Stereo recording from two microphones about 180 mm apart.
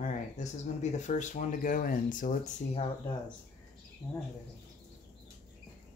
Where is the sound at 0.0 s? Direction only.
40° left (ahead or behind).